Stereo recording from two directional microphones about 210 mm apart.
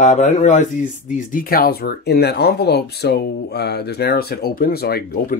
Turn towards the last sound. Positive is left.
turn(degrees=50)  # may be behind; listen again after turning